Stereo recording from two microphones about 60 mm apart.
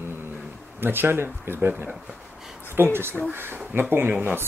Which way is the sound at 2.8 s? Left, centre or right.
Right.